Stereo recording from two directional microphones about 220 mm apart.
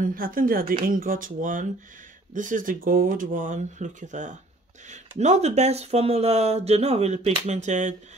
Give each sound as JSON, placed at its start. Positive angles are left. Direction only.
{"t": 0.0, "sound": "speech", "side_deg": -40}